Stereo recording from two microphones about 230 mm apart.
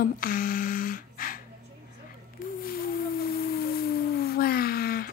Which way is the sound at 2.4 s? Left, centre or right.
Left.